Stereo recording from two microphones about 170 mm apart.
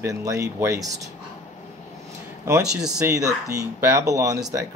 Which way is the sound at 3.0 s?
15° right (ahead or behind).